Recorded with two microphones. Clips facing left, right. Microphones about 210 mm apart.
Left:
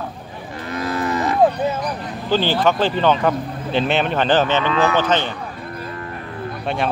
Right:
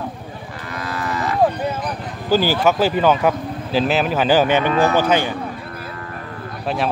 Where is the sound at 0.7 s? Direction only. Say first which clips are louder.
Left 4 dB; 20° left (ahead or behind).